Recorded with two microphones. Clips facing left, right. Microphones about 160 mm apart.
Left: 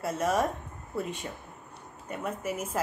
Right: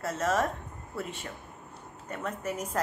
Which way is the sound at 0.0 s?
10° left (ahead or behind).